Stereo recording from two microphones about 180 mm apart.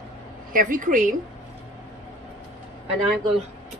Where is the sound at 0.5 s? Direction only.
50° right (ahead or behind).